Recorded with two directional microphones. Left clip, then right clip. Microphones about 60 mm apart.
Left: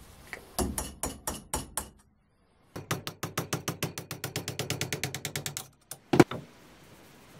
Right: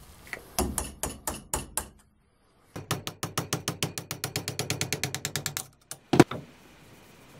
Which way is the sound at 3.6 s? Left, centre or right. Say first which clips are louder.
Right 2 dB; centre.